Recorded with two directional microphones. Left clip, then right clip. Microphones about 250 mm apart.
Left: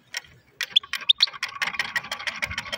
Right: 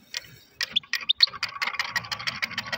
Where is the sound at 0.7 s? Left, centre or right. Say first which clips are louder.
Left 5 dB; centre.